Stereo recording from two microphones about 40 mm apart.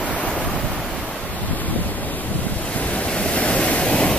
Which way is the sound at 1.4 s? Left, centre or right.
Left.